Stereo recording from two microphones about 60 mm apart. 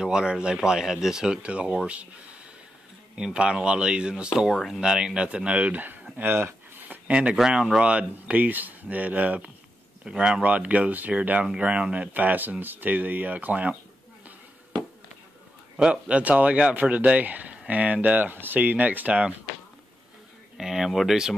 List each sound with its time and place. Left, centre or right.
0.0 s speech: centre
3.3 s speech: centre
4.6 s speech: centre; by 5.9 s right
6.1 s a sound: right
7.1 s speech: right
7.3 s speech: centre
15.7 s speech: centre
20.5 s speech: centre